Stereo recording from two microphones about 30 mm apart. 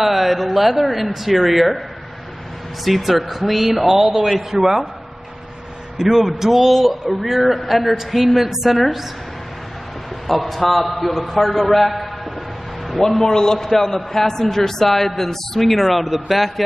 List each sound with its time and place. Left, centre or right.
0.0 s speech: centre
2.8 s speech: centre
5.9 s speech: centre
6.7 s speech: centre
10.2 s a man's voice: centre
13.0 s a man's voice: centre